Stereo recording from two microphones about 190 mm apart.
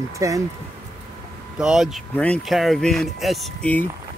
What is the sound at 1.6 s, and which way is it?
Speech, centre (ahead or behind).